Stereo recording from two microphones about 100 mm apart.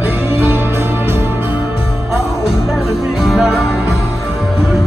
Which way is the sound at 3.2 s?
5° right (ahead or behind).